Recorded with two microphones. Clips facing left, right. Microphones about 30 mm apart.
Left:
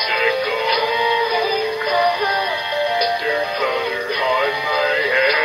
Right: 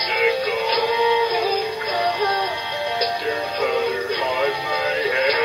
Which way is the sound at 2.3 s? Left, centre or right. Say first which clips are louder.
Left 3 dB; left.